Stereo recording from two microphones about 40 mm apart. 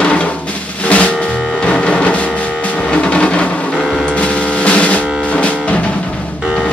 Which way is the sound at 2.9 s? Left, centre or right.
Left.